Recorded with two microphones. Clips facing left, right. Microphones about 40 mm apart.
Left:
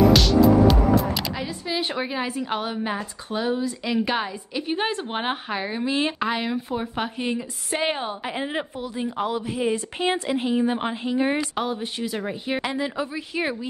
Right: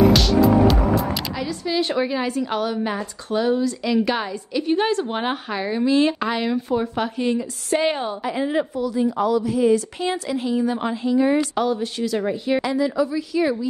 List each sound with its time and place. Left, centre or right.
0.1 s music: centre
1.3 s a woman's voice: centre
8.2 s a woman's voice: left
11.5 s speech: left
12.7 s a woman's voice: left